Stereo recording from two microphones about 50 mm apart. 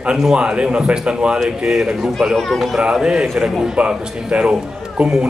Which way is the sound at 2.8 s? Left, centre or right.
Centre.